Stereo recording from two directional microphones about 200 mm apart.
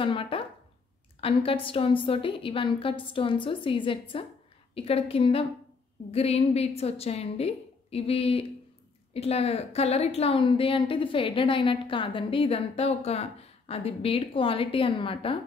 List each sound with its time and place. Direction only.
0.0 s a woman's voice: 25° left (ahead or behind)